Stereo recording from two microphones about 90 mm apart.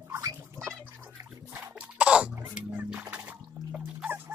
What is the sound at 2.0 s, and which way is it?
Cough, 15° right (ahead or behind).